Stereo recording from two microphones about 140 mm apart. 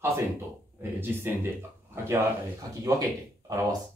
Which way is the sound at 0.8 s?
15° right (ahead or behind).